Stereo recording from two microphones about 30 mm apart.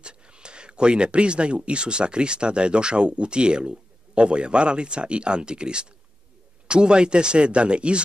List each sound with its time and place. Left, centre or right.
0.0 s speech: right